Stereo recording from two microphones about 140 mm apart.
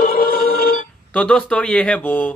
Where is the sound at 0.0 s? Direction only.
90° left.